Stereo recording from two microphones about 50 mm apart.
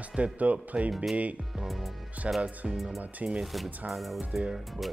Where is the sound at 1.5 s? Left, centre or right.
Centre.